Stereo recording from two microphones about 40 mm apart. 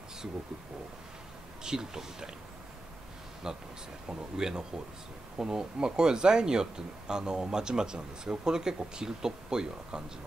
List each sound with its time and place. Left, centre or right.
1.6 s speech: centre
3.4 s speech: centre